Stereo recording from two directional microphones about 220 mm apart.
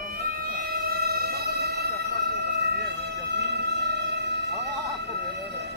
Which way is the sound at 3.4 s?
50° right (ahead or behind).